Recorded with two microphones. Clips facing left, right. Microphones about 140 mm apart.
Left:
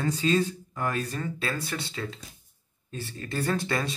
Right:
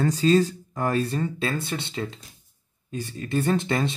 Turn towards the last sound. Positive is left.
turn(degrees=-25)  # may be behind; listen again after turning